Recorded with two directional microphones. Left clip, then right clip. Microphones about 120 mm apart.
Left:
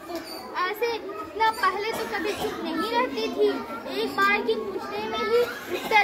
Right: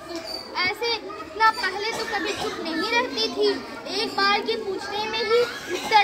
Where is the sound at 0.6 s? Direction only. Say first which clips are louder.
Right 2 dB; 15° right (ahead or behind).